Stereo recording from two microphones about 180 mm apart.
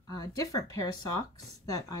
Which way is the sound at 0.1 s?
20° left (ahead or behind).